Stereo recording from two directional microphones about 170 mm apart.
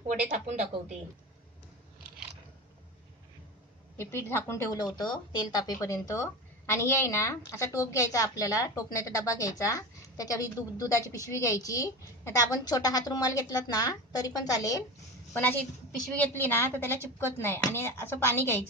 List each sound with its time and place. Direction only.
0.3 s speech: 45° right (ahead or behind)
3.9 s speech: 15° left (ahead or behind)
4.7 s a woman's voice: 25° left (ahead or behind)
16.1 s speech: 10° left (ahead or behind)